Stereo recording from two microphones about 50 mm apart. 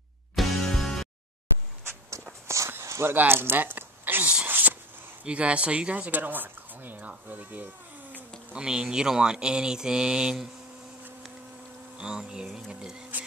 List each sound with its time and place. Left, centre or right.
0.4 s music: centre
2.4 s walk: right
2.8 s a sound: right
3.2 s speech: right
4.2 s speech: right
4.5 s a sound: right
5.2 s speech: right
8.5 s speech: centre
12.0 s speech: centre